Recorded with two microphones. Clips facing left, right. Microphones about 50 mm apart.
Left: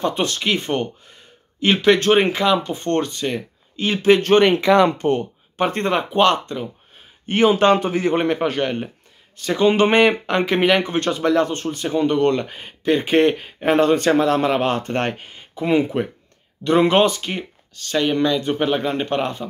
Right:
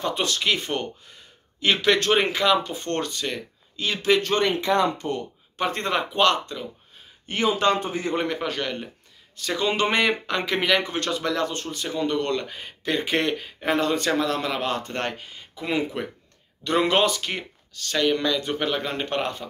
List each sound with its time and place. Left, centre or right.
0.0 s speech: left
3.7 s speech: left
4.2 s speech: left
5.6 s speech: left
6.3 s speech: left
7.2 s speech: left
7.8 s speech: left
8.1 s speech: left; by 19.4 s centre